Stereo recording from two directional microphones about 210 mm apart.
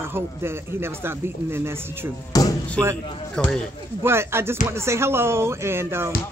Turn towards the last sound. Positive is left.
turn(degrees=-10)  # may be behind; listen again after turning